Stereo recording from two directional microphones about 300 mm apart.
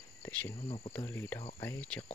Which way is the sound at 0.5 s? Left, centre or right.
Centre.